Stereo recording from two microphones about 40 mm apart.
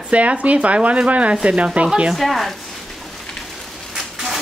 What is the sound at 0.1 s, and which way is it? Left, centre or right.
Speech, right.